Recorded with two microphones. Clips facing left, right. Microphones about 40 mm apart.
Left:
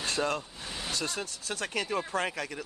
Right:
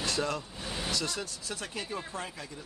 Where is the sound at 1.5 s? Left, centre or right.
Left.